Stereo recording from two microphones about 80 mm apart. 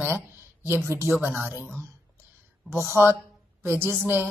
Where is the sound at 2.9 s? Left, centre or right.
Right.